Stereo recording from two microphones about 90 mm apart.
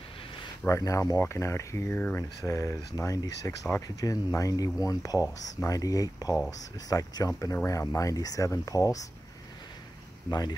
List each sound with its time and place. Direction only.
0.7 s speech: 35° left (ahead or behind)